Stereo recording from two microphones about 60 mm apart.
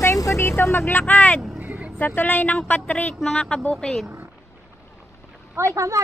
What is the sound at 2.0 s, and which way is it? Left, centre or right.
A woman's voice, left.